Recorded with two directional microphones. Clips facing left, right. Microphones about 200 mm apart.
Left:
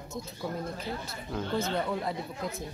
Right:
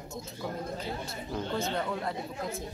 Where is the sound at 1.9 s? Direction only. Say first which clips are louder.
Left 2 dB; 5° left (ahead or behind).